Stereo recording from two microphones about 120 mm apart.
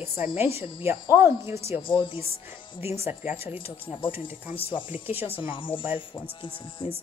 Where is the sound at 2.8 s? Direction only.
20° right (ahead or behind).